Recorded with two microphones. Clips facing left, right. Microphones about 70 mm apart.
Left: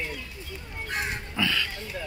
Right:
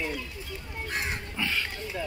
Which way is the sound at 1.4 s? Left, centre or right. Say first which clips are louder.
Left 3 dB; left.